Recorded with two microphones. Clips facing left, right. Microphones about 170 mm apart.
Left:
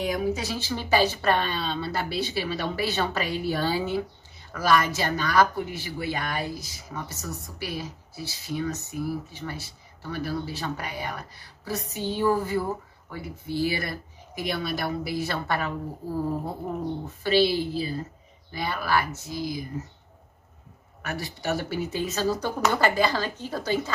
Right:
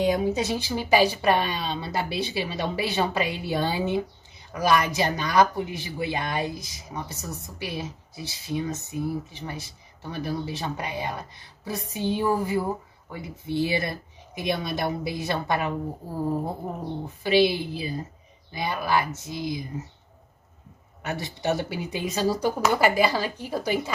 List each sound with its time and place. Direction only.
0.0 s speech: 25° right (ahead or behind)
17.2 s speech: 15° right (ahead or behind)
21.0 s speech: 20° right (ahead or behind)